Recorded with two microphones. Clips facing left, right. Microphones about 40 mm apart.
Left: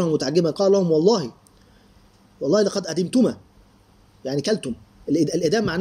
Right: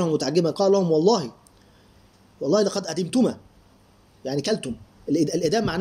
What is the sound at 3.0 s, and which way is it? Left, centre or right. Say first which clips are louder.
Speech: left 2 dB; right.